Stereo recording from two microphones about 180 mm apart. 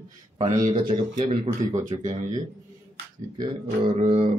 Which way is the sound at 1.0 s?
40° right (ahead or behind).